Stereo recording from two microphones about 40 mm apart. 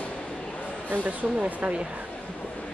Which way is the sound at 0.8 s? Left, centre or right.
Right.